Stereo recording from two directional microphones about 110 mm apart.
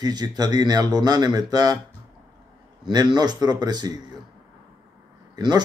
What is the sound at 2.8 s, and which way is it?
Speech, 40° right (ahead or behind).